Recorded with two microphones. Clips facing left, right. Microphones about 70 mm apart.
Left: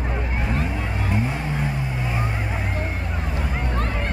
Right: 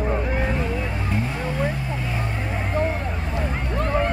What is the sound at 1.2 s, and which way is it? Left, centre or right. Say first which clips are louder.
Vehicle: even; left.